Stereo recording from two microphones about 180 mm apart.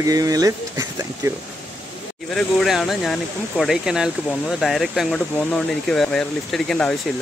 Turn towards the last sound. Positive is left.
turn(degrees=5)  # may be behind; listen again after turning